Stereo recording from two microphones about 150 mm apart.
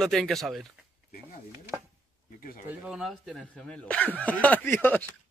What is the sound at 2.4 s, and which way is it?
Speech, 65° left (ahead or behind).